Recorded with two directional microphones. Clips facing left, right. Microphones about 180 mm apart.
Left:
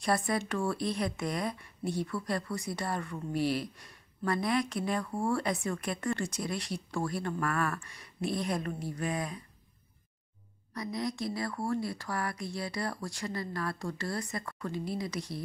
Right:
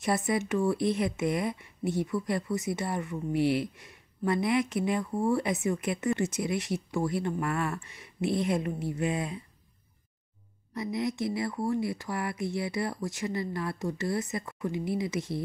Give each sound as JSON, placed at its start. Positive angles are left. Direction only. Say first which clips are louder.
{"t": 0.0, "sound": "a woman's voice", "louder": "right 2 dB", "side_deg": -20}
{"t": 10.7, "sound": "a woman's voice", "louder": "right 4 dB", "side_deg": -25}